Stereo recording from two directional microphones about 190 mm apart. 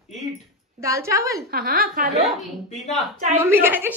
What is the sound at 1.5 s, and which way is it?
Speech, 50° right (ahead or behind).